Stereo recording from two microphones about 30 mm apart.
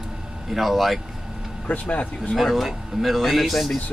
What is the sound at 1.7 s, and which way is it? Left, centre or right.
Speech, left.